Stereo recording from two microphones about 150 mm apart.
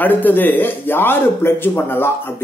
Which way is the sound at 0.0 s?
10° left (ahead or behind).